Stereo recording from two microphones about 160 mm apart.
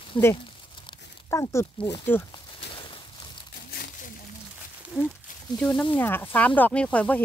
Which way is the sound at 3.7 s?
75° left (ahead or behind).